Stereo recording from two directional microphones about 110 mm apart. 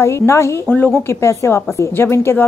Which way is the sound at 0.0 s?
25° left (ahead or behind).